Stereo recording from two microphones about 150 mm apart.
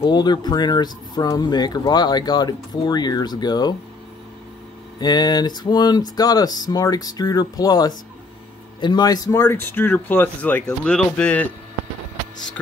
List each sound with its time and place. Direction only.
0.0 s speech: 30° left (ahead or behind)
5.0 s speech: 30° left (ahead or behind); by 11.5 s 10° left (ahead or behind)